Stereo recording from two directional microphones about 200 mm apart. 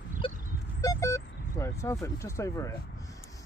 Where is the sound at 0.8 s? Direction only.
15° left (ahead or behind).